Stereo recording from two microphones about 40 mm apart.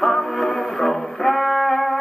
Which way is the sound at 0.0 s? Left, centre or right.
Centre.